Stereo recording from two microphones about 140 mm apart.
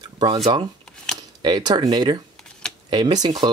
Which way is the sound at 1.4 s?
30° right (ahead or behind).